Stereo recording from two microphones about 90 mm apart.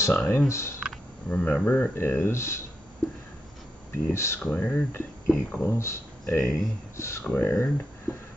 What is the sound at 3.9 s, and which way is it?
Speech, 30° left (ahead or behind).